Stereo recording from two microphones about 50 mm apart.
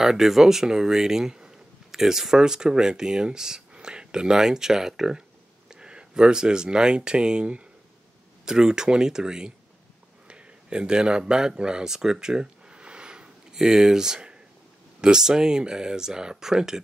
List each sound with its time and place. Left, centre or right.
0.0 s speech: centre